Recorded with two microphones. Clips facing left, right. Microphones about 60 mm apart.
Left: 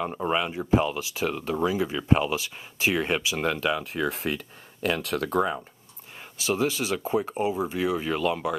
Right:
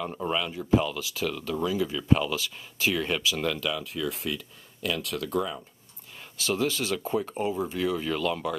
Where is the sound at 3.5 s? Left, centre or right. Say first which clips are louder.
Left 4 dB; left.